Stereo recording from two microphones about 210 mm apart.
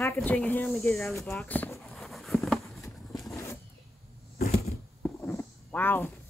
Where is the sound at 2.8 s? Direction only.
15° left (ahead or behind).